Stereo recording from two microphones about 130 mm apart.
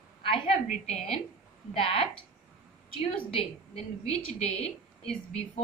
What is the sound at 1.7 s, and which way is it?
Speech, 45° left (ahead or behind).